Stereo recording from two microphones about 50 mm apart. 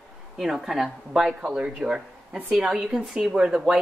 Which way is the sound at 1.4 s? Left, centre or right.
Centre.